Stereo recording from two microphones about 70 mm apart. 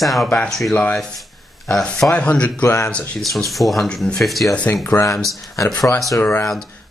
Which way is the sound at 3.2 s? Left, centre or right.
Centre.